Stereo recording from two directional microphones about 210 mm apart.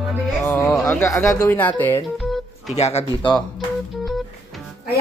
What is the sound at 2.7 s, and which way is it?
Speech, 30° left (ahead or behind).